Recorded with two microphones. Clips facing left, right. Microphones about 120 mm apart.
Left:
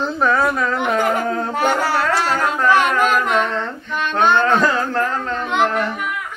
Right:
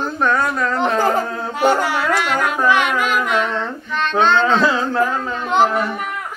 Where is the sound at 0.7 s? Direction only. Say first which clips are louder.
Right 5 dB; 30° right (ahead or behind).